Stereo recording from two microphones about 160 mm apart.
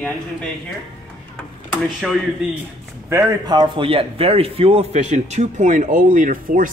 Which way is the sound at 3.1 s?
25° right (ahead or behind).